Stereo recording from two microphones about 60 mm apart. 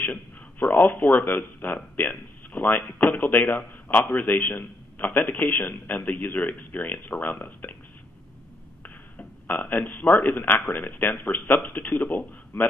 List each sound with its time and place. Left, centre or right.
0.0 s a man's voice: left
9.5 s speech: left